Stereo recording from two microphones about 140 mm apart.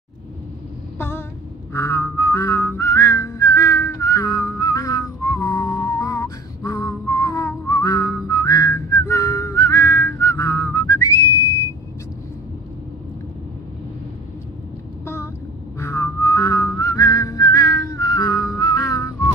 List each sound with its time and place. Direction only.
0.9 s a sound: 15° left (ahead or behind)
1.7 s whistling: 20° left (ahead or behind)
15.8 s whistling: 20° left (ahead or behind)